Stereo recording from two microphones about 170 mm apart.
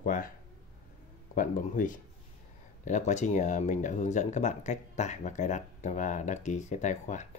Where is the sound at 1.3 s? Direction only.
50° left (ahead or behind).